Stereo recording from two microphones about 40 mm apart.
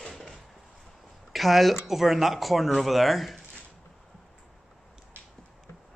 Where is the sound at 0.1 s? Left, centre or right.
Centre.